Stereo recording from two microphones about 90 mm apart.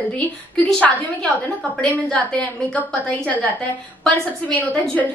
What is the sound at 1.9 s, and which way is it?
A woman's voice, 15° left (ahead or behind).